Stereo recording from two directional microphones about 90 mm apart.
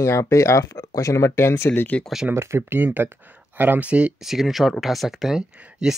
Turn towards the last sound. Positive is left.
turn(degrees=-5)  # may be behind; listen again after turning